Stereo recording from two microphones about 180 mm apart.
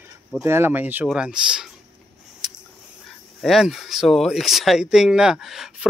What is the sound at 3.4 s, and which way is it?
Speech, centre (ahead or behind).